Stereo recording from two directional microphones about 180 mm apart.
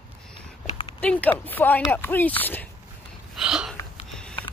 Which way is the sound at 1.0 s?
10° left (ahead or behind).